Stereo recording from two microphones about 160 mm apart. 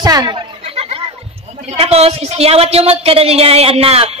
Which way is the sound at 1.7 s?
40° right (ahead or behind).